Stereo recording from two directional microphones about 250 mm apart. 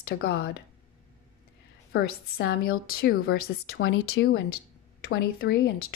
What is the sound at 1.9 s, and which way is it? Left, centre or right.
A woman's voice, left.